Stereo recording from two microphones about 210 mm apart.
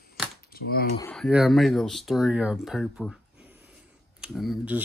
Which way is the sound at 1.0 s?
Centre (ahead or behind).